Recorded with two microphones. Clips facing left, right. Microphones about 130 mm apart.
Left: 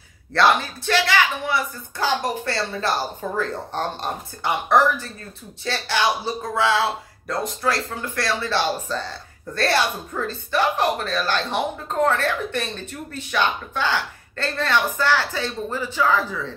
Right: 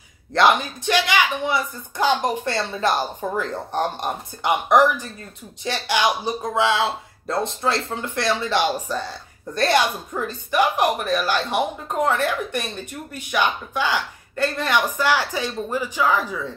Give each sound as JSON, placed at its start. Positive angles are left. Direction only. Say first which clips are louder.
{"t": 0.3, "sound": "speech", "louder": "right 1 dB", "side_deg": -20}